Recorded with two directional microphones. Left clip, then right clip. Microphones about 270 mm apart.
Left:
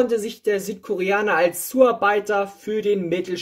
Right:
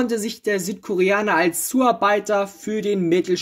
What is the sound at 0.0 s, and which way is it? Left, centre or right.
Speech, right.